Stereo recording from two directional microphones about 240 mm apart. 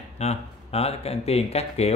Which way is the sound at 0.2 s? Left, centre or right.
Left.